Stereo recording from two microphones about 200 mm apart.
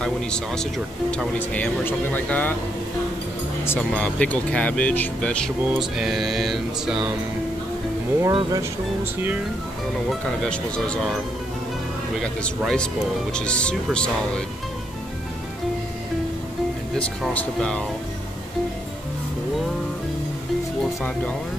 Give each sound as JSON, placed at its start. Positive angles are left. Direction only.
{"t": 0.0, "sound": "speech", "side_deg": 5}
{"t": 3.6, "sound": "speech", "side_deg": 10}
{"t": 8.2, "sound": "speech", "side_deg": -20}
{"t": 10.4, "sound": "speech", "side_deg": 5}
{"t": 12.2, "sound": "speech", "side_deg": 5}
{"t": 16.9, "sound": "speech", "side_deg": 5}